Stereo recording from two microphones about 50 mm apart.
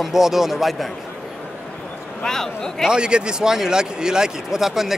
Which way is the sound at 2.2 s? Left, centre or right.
Centre.